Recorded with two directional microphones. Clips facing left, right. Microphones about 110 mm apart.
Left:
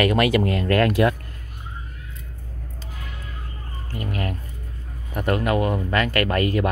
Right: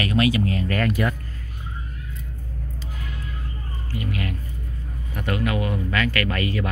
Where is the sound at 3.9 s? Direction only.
45° left (ahead or behind).